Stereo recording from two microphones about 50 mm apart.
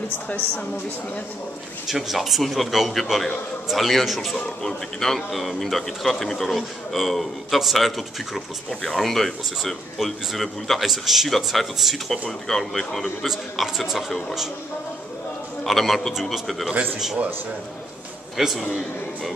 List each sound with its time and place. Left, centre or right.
1.9 s speech: centre
13.3 s speech: centre
15.6 s a man's voice: centre
18.4 s speech: centre